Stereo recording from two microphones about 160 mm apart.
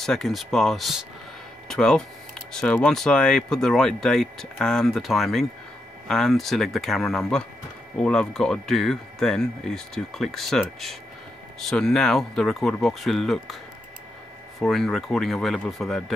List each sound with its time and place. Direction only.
0.0 s speech: centre (ahead or behind)
14.6 s speech: centre (ahead or behind)